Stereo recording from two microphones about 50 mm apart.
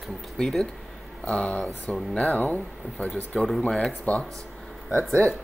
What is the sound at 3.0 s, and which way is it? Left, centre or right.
Speech, centre.